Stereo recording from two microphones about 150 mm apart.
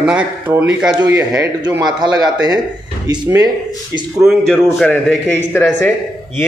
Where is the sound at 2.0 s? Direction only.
25° right (ahead or behind).